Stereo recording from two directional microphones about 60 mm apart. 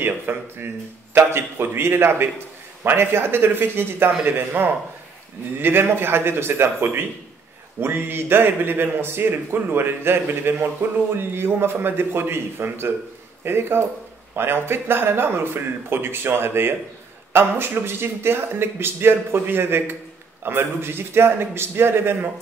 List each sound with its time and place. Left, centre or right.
0.0 s speech: right